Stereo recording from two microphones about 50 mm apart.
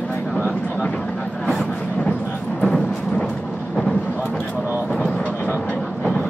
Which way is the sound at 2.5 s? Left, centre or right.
Centre.